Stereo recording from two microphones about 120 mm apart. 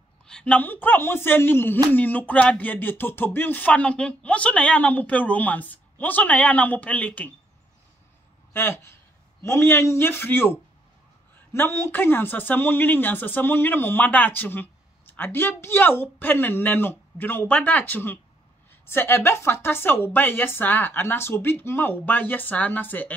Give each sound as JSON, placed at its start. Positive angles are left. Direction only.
{"t": 0.3, "sound": "speech", "side_deg": 10}
{"t": 8.5, "sound": "a man's voice", "side_deg": 20}